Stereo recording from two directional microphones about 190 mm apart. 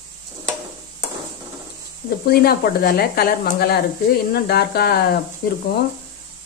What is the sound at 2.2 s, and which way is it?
A woman's voice, 55° left (ahead or behind).